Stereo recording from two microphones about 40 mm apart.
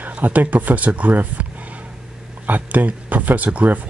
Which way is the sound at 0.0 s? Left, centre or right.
Right.